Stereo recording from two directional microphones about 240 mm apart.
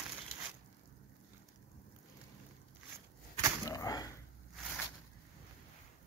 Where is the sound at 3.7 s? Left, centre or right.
Centre.